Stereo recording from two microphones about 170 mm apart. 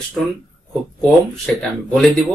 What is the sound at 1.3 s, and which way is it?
Speech, 5° left (ahead or behind).